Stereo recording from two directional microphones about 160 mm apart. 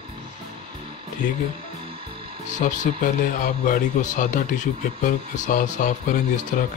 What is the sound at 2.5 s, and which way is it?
Speech, 50° left (ahead or behind).